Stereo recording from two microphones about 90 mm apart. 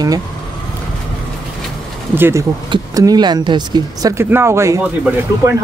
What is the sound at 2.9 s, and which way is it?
Speech, 45° right (ahead or behind).